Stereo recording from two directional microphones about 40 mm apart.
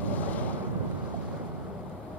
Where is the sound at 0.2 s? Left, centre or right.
Left.